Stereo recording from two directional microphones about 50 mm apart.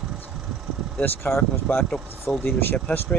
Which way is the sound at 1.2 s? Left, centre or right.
Left.